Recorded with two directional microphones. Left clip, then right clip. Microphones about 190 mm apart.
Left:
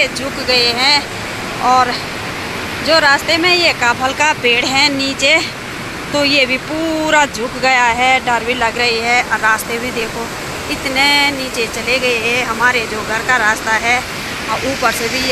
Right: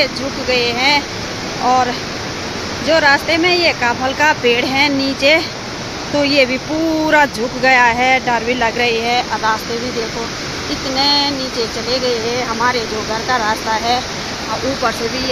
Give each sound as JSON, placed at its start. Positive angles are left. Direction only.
{"t": 0.0, "sound": "speech", "side_deg": -10}
{"t": 2.9, "sound": "speech", "side_deg": -15}
{"t": 11.0, "sound": "speech", "side_deg": 0}
{"t": 13.3, "sound": "speech", "side_deg": -10}